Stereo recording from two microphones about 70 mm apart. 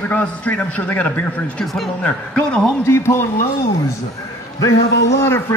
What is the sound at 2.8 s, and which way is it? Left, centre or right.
Speech, left.